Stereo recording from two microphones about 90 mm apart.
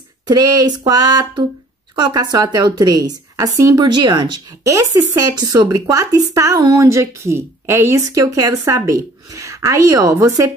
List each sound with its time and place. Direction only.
0.3 s a woman's voice: 45° right (ahead or behind)
3.8 s speech: 50° right (ahead or behind); by 10.5 s 35° right (ahead or behind)